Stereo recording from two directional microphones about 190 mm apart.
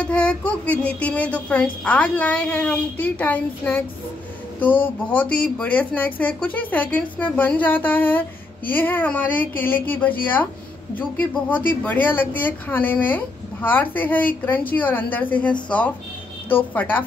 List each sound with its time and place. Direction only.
0.0 s speech: 5° left (ahead or behind)
11.8 s speech: 10° left (ahead or behind)